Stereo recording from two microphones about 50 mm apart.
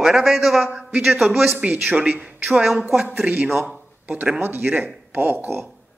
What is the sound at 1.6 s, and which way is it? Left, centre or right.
Speech, right.